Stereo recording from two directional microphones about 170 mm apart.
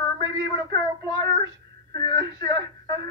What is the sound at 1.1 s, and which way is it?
Child singing, 20° left (ahead or behind).